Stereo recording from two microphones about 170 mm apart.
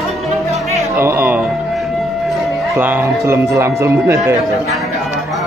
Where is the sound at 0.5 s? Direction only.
40° right (ahead or behind).